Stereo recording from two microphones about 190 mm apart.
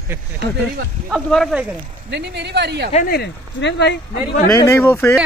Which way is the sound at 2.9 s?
55° left (ahead or behind).